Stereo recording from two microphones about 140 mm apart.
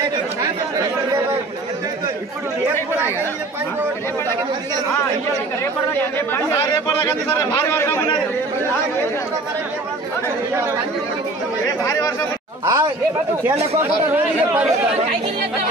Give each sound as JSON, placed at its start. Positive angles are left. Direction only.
{"t": 7.2, "sound": "a man's voice", "side_deg": 15}
{"t": 11.8, "sound": "speech", "side_deg": 20}
{"t": 12.6, "sound": "speech", "side_deg": -25}
{"t": 13.7, "sound": "speech", "side_deg": -15}